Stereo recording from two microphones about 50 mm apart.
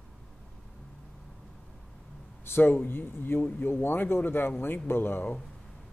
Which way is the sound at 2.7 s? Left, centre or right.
Left.